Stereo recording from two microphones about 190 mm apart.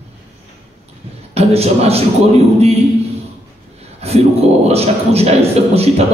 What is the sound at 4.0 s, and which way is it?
A man's voice, 35° right (ahead or behind).